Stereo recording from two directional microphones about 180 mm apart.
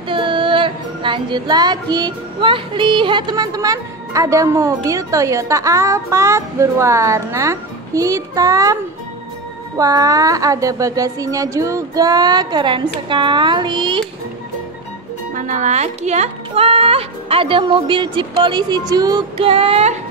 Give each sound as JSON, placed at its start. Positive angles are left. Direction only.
{"t": 0.1, "sound": "female singing", "side_deg": -25}
{"t": 9.8, "sound": "female singing", "side_deg": -20}
{"t": 15.3, "sound": "speech", "side_deg": -45}